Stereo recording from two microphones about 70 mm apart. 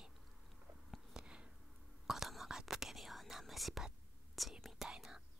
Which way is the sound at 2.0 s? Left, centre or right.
Centre.